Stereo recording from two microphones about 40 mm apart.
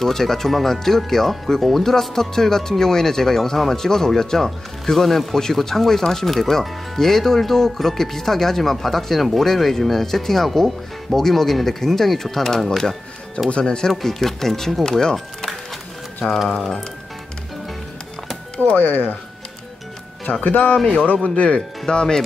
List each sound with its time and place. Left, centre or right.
0.0 s speech: centre
13.5 s speech: left
14.0 s speech: centre
18.8 s speech: left
20.3 s speech: left
21.5 s speech: centre